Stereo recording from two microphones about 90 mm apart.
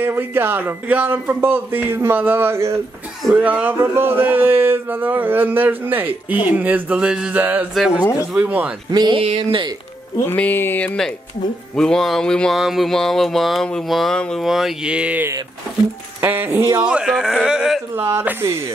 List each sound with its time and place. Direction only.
0.0 s speech: 25° right (ahead or behind)
3.3 s speech: 15° right (ahead or behind)
8.2 s speech: 20° right (ahead or behind)
8.9 s a sound: 55° right (ahead or behind)
10.2 s speech: 20° left (ahead or behind)
11.7 s speech: 5° left (ahead or behind)
15.0 s speech: 15° right (ahead or behind)
16.8 s speech: 10° right (ahead or behind)
17.9 s speech: 25° right (ahead or behind)